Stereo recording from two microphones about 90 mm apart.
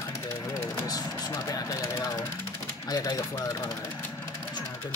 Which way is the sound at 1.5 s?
35° left (ahead or behind).